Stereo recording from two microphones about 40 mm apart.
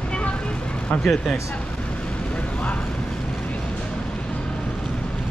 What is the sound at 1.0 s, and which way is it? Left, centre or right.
Speech, centre.